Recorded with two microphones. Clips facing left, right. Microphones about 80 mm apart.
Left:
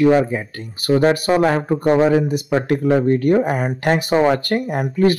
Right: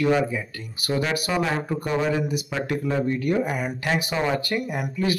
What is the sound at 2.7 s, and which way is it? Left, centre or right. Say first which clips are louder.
Speech: left 8 dB; left.